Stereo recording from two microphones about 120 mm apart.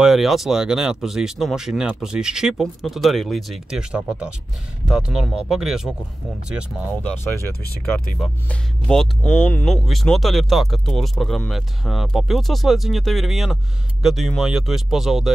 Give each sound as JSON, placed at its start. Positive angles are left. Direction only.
{"t": 0.0, "sound": "speech", "side_deg": 0}
{"t": 7.0, "sound": "speech", "side_deg": 15}
{"t": 8.5, "sound": "speech", "side_deg": 5}